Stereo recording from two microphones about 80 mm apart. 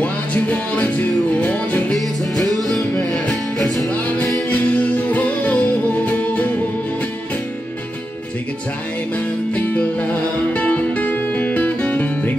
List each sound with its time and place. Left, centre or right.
0.0 s music: centre
2.0 s music: centre
4.5 s music: centre
9.1 s music: centre